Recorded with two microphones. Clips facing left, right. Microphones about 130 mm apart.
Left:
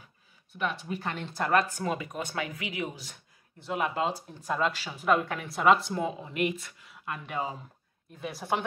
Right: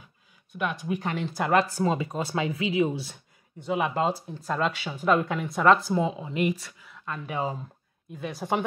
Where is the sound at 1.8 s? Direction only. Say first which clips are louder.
Right 5 dB; 25° right (ahead or behind).